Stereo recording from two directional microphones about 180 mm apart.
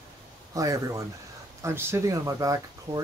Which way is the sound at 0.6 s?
20° right (ahead or behind).